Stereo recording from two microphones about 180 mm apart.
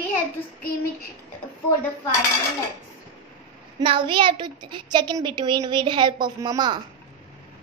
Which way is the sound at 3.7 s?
30° right (ahead or behind).